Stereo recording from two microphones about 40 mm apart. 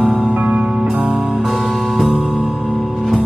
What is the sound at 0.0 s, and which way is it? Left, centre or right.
Music, right.